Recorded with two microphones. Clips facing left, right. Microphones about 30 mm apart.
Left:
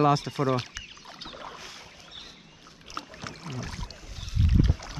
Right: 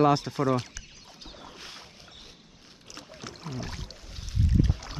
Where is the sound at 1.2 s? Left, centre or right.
Left.